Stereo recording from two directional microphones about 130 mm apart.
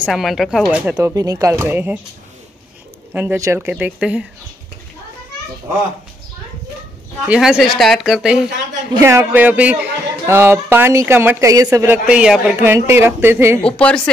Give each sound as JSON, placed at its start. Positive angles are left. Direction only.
{"t": 0.0, "sound": "speech", "side_deg": 0}
{"t": 0.7, "sound": "a woman's voice", "side_deg": -10}
{"t": 0.9, "sound": "a man's voice", "side_deg": -25}
{"t": 3.1, "sound": "a woman's voice", "side_deg": -15}
{"t": 7.2, "sound": "speech", "side_deg": -5}
{"t": 9.0, "sound": "a man's voice", "side_deg": -15}
{"t": 12.1, "sound": "a woman's voice", "side_deg": -10}
{"t": 13.6, "sound": "speech", "side_deg": 10}